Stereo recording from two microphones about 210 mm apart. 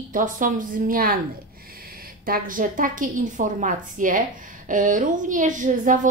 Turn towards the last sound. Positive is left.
turn(degrees=-40)  # may be behind; listen again after turning